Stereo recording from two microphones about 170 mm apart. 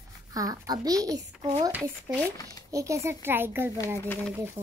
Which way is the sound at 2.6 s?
20° right (ahead or behind).